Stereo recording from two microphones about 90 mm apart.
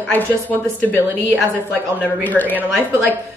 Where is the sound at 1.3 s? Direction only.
20° right (ahead or behind).